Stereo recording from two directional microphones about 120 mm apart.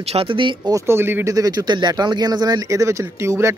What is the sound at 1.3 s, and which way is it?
Speech, 30° right (ahead or behind).